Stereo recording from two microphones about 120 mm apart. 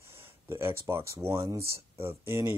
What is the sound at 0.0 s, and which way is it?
Speech, 20° right (ahead or behind).